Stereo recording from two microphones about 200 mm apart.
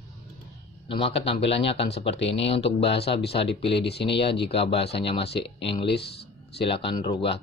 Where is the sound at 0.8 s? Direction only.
30° left (ahead or behind).